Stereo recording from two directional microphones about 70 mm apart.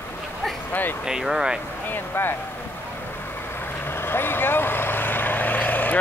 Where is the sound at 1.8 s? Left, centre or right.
Left.